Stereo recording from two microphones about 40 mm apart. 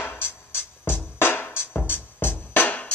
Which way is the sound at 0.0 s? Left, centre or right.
Left.